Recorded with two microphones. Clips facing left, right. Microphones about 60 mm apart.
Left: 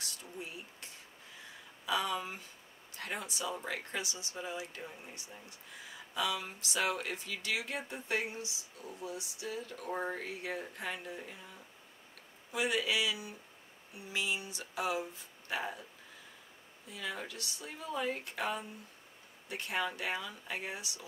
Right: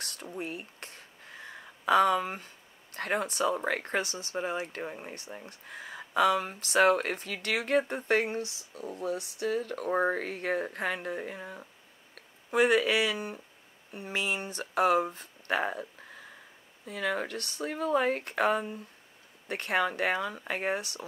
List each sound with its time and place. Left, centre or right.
0.0 s speech: right